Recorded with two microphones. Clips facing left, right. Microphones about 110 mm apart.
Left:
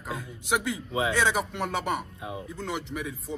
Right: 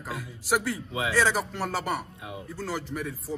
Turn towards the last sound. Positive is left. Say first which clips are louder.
# right 1 dB
turn(degrees=0)  # may be behind; listen again after turning